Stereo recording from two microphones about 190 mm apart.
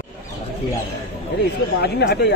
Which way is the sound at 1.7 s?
60° left (ahead or behind).